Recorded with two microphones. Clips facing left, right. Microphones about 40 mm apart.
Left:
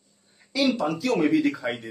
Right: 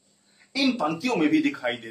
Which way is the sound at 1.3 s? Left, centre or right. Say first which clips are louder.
Even; right.